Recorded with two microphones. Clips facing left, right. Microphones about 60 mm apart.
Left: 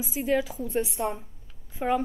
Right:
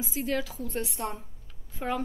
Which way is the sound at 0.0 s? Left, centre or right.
Centre.